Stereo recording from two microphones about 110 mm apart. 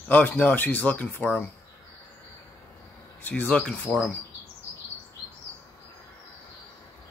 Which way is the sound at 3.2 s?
15° left (ahead or behind).